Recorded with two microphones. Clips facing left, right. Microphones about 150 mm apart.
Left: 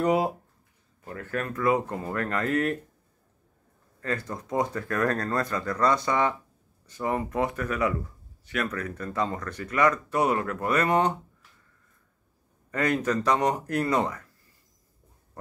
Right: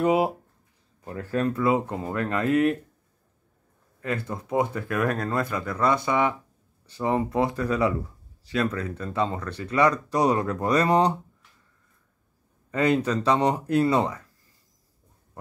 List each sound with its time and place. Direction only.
0.0 s speech: 25° right (ahead or behind)
4.3 s speech: 10° right (ahead or behind)
7.3 s speech: 30° right (ahead or behind)
10.2 s speech: 15° right (ahead or behind)
10.7 s speech: 35° right (ahead or behind)
12.7 s speech: 25° right (ahead or behind)